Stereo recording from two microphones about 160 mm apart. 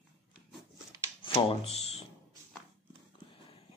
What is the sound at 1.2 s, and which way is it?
Speech, 35° left (ahead or behind).